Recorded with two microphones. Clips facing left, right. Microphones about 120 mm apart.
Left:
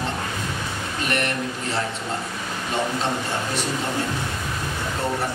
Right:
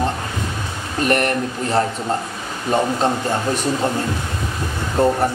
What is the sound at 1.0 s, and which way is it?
Speech, 45° right (ahead or behind).